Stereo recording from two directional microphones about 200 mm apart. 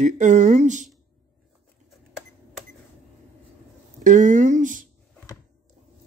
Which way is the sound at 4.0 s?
40° right (ahead or behind).